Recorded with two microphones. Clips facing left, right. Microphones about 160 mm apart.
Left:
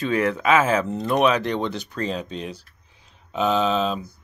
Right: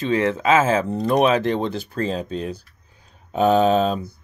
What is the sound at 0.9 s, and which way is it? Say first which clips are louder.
A man's voice: right 3 dB; 40° right (ahead or behind).